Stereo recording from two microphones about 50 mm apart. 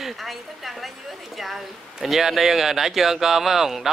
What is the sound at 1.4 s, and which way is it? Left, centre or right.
Speech, centre.